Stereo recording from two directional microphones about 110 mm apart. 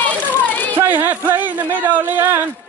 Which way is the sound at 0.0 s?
15° left (ahead or behind).